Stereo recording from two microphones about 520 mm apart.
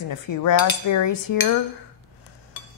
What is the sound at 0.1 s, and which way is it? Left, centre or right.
Cutlery, left.